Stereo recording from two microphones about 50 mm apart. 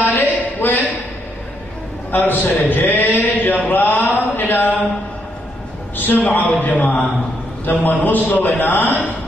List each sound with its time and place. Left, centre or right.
0.0 s a sound: left
2.0 s a man's voice: left
5.9 s a man's voice: left